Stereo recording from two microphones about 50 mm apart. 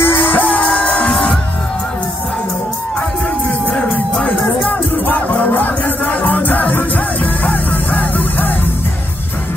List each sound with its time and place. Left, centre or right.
0.0 s music: left
1.1 s music: centre
3.6 s music: left